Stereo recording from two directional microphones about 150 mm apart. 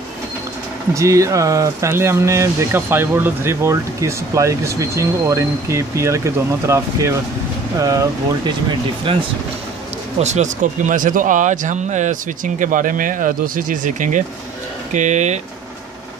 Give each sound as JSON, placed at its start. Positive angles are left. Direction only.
{"t": 0.9, "sound": "speech", "side_deg": -20}
{"t": 9.1, "sound": "speech", "side_deg": -35}
{"t": 10.2, "sound": "speech", "side_deg": -55}